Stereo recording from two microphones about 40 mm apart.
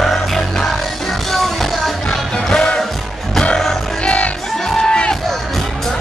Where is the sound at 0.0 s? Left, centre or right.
Centre.